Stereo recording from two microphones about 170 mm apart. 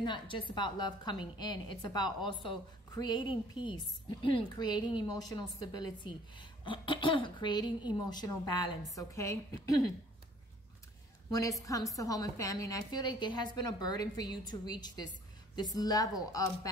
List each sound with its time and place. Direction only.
0.0 s a woman's voice: 30° left (ahead or behind)
11.3 s a woman's voice: 20° left (ahead or behind)